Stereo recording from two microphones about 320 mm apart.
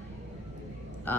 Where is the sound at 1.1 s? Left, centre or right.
Centre.